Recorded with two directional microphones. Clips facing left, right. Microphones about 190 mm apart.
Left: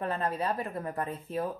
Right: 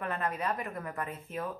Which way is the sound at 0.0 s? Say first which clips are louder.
Left 3 dB; 30° left (ahead or behind).